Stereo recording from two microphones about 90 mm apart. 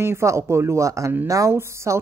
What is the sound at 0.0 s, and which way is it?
Speech, 30° right (ahead or behind).